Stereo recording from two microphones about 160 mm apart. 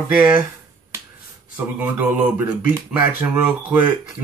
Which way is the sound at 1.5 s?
10° right (ahead or behind).